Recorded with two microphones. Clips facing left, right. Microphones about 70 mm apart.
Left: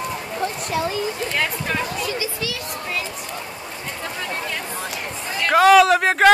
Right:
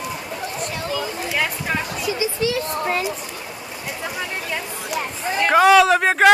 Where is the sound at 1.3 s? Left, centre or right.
Centre.